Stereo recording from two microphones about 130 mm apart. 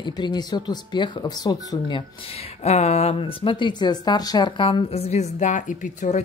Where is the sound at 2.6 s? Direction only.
55° left (ahead or behind).